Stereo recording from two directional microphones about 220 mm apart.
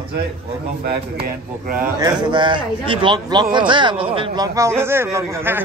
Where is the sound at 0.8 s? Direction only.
45° right (ahead or behind).